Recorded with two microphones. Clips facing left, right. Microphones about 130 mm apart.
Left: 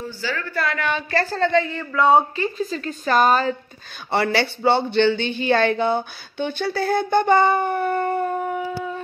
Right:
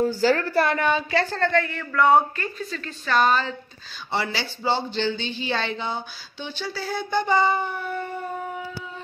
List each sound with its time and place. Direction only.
0.0 s a woman's voice: 45° right (ahead or behind)
0.7 s a woman's voice: 20° right (ahead or behind)
1.1 s a woman's voice: 10° left (ahead or behind)
2.6 s a woman's voice: 35° left (ahead or behind)
4.1 s speech: 60° left (ahead or behind)